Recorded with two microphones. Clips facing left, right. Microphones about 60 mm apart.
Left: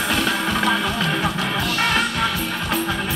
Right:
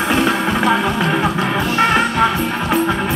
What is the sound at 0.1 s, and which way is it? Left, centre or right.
Music, right.